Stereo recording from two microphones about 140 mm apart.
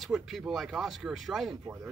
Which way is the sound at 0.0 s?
Centre (ahead or behind).